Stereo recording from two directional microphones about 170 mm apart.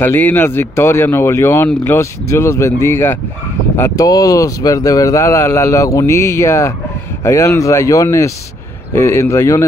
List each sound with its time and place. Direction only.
0.0 s speech: 10° left (ahead or behind)